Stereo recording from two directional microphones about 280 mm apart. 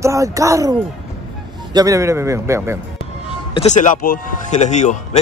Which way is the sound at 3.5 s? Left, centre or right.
Left.